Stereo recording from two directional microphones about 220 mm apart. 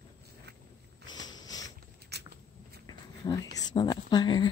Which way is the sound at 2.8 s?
15° left (ahead or behind).